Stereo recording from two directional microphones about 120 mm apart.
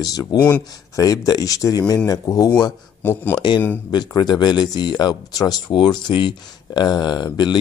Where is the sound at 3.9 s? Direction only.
35° left (ahead or behind).